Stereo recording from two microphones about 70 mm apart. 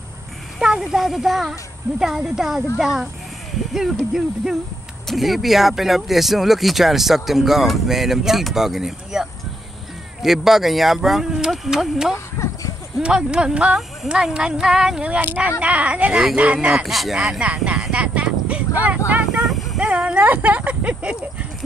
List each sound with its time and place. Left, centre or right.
0.6 s speech: centre
5.0 s speech: centre
12.4 s a sound: left
13.0 s speech: centre
15.2 s speech: right
16.1 s speech: centre
17.3 s speech: centre
19.4 s a sound: centre
19.8 s speech: centre